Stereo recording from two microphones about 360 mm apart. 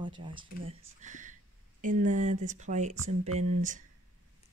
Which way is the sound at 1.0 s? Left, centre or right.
Right.